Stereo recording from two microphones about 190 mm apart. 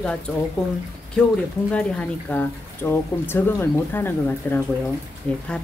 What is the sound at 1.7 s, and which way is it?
Speech, 5° left (ahead or behind).